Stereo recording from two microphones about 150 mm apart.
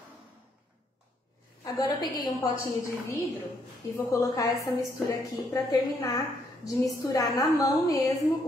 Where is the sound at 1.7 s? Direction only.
25° left (ahead or behind).